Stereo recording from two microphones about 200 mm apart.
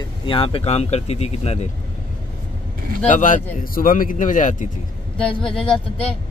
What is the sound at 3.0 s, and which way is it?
Speech, 40° left (ahead or behind).